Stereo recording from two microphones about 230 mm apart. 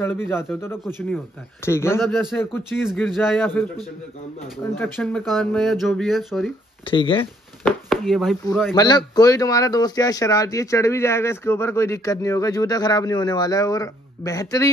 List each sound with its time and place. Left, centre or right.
0.0 s speech: centre
4.7 s speech: centre
6.8 s speech: left
7.6 s speech: centre
8.7 s speech: centre